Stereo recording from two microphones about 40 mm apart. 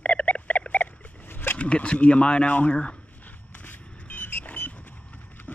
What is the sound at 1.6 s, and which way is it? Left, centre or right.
Speech, left.